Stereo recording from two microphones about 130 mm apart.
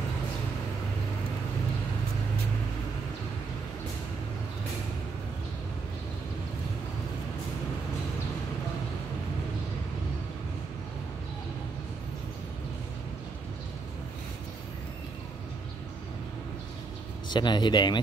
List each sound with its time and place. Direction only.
17.3 s speech: 35° left (ahead or behind)